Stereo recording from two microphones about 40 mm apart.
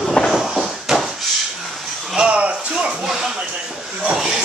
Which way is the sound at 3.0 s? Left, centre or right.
Centre.